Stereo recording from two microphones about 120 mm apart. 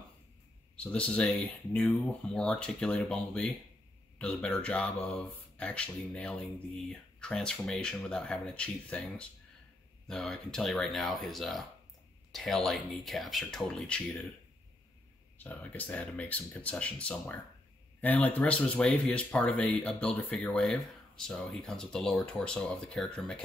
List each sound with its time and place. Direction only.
0.7 s speech: 10° left (ahead or behind)
15.3 s speech: 15° left (ahead or behind)